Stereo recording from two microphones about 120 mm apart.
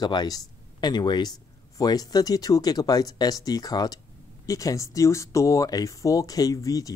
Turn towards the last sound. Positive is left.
turn(degrees=30)  # may be behind; listen again after turning